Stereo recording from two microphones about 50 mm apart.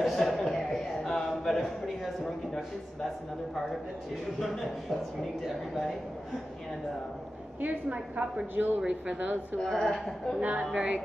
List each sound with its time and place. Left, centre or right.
0.2 s a sound: centre
2.2 s a man's voice: centre
4.4 s a man's voice: centre
7.6 s a woman's voice: right
8.8 s a woman's voice: right
9.6 s a man's voice: centre
10.4 s a woman's voice: right